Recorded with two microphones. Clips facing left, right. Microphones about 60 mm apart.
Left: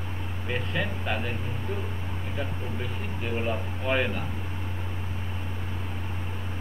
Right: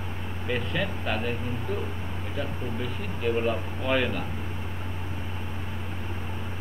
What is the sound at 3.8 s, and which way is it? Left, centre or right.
Speech, centre.